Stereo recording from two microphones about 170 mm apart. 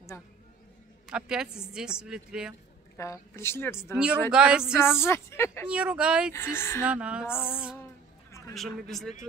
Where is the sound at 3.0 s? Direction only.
20° left (ahead or behind).